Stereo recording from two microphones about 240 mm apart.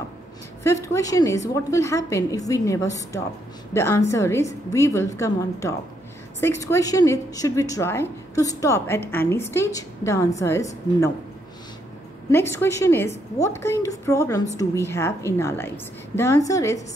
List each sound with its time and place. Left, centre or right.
0.7 s a woman's voice: centre
4.1 s a woman's voice: centre
12.3 s a woman's voice: centre